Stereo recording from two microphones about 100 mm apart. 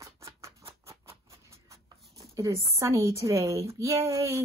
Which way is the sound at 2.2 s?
30° right (ahead or behind).